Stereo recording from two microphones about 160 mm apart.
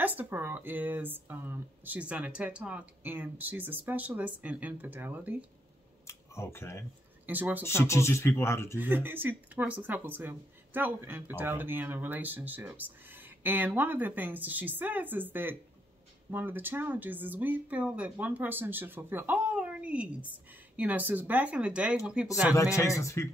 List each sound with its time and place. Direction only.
0.0 s speech: 10° right (ahead or behind)
6.0 s speech: 15° left (ahead or behind)
7.2 s speech: 10° right (ahead or behind)
7.6 s speech: 15° left (ahead or behind)
8.7 s speech: 10° right (ahead or behind)
22.8 s speech: 20° left (ahead or behind)